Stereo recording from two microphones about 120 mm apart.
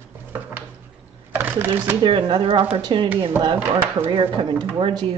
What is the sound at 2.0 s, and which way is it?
Speech, 45° right (ahead or behind).